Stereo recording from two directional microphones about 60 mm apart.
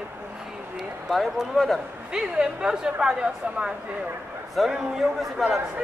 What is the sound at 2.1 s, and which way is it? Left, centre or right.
Speech, centre.